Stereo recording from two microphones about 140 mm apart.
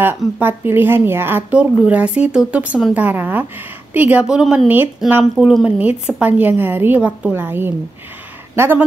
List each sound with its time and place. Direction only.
0.4 s speech: 15° right (ahead or behind)
5.3 s speech: centre (ahead or behind)